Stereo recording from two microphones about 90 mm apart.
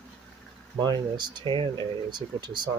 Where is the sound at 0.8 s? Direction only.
55° right (ahead or behind).